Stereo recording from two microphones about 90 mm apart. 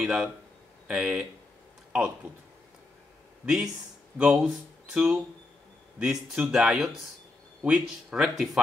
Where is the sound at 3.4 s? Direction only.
5° right (ahead or behind).